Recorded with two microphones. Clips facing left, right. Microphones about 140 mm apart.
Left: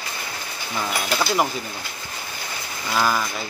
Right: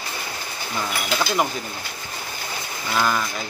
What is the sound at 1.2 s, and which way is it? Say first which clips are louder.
Speech: left 1 dB; centre (ahead or behind).